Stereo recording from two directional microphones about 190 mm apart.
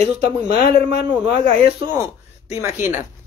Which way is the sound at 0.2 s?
60° left (ahead or behind).